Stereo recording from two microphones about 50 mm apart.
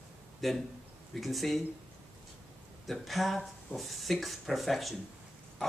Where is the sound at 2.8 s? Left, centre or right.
Centre.